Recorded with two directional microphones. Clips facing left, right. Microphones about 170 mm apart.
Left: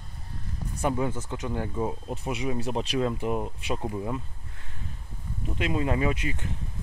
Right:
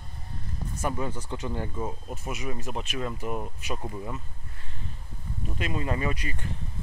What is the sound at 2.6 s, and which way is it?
Speech, 30° left (ahead or behind).